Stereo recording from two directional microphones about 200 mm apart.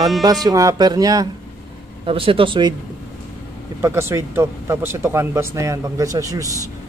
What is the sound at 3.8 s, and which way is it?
Speech, 15° right (ahead or behind).